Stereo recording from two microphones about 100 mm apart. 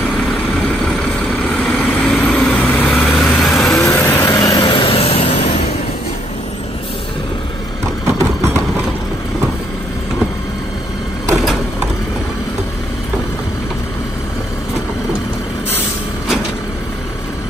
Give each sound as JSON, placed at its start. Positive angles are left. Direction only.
{"t": 1.6, "sound": "vehicle", "side_deg": 10}
{"t": 3.0, "sound": "vehicle", "side_deg": 0}
{"t": 3.8, "sound": "vehicle", "side_deg": 20}
{"t": 4.4, "sound": "vehicle", "side_deg": 40}